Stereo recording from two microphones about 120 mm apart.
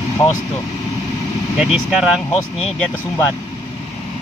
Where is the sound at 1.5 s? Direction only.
5° right (ahead or behind).